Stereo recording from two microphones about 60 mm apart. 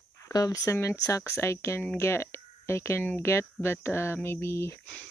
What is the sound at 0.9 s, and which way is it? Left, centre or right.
Speech, left.